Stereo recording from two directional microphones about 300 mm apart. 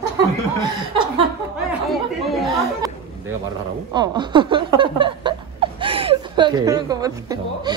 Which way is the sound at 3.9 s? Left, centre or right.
Centre.